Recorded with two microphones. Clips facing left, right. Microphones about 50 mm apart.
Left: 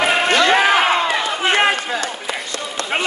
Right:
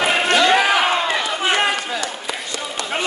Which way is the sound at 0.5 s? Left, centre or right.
Left.